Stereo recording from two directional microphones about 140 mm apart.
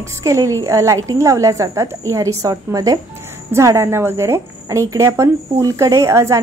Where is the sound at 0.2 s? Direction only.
20° right (ahead or behind).